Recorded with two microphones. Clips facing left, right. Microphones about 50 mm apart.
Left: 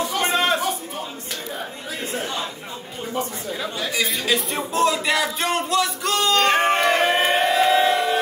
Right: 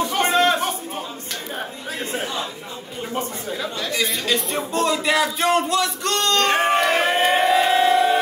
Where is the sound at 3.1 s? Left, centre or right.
Right.